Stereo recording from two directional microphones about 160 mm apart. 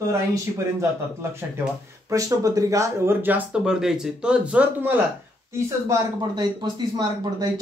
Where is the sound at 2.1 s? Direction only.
20° right (ahead or behind).